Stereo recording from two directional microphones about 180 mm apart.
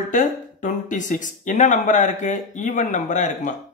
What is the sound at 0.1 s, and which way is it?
Speech, 45° left (ahead or behind).